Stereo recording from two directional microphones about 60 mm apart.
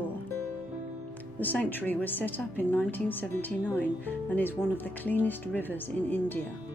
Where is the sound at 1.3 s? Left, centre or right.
Left.